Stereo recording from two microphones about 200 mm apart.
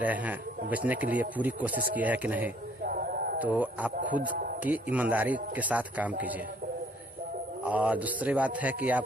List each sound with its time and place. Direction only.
0.0 s speech: 10° right (ahead or behind)
2.8 s a sound: 45° right (ahead or behind)
3.3 s speech: 10° right (ahead or behind)
7.6 s speech: 10° right (ahead or behind)